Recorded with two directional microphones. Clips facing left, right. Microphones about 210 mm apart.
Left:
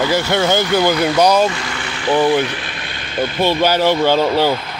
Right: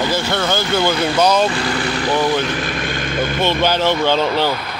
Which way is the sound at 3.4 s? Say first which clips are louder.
Left 3 dB; 10° left (ahead or behind).